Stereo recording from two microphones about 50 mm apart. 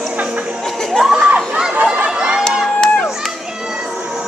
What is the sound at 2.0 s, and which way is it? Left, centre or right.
Crowd, centre.